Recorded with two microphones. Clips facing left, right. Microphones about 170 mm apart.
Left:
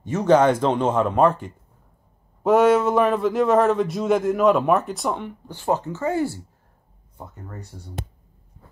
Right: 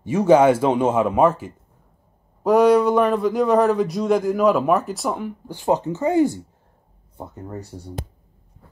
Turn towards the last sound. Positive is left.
turn(degrees=-30)  # may be behind; listen again after turning